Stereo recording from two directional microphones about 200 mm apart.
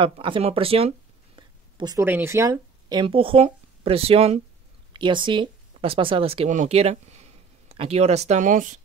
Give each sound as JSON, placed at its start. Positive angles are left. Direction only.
{"t": 0.0, "sound": "speech", "side_deg": -25}